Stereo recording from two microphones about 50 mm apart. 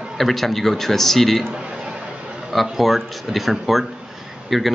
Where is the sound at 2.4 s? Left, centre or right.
Centre.